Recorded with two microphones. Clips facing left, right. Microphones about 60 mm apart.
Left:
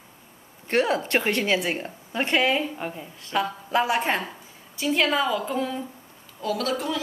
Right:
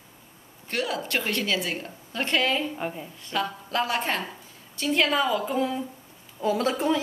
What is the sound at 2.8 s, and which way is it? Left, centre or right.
Speech, centre.